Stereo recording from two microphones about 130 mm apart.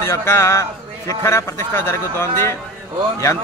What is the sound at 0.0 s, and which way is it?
A man's voice, 20° left (ahead or behind).